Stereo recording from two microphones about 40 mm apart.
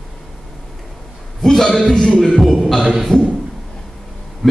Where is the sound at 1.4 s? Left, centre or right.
Centre.